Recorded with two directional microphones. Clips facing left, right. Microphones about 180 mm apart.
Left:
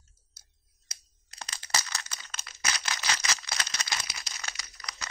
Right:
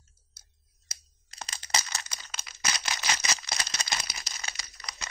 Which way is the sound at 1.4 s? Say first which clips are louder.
Right 1 dB; 20° right (ahead or behind).